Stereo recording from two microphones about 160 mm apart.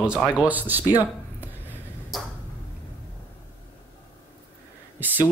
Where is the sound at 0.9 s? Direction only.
10° right (ahead or behind).